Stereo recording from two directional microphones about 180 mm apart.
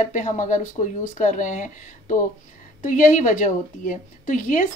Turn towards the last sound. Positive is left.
turn(degrees=45)  # may be behind; listen again after turning